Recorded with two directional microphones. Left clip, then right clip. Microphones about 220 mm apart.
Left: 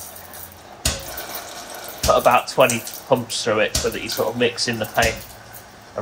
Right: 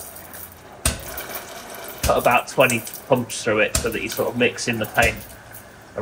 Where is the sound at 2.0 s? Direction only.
15° left (ahead or behind).